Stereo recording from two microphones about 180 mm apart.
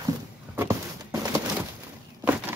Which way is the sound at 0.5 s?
15° right (ahead or behind).